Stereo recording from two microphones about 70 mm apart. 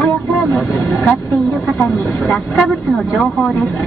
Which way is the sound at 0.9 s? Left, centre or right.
Left.